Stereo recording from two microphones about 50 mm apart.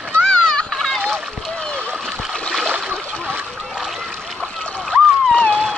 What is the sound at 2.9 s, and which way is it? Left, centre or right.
Splash, right.